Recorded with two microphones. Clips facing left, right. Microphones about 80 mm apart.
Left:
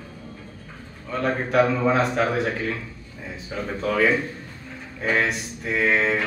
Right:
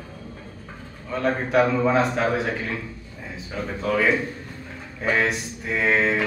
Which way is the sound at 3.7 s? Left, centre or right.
Centre.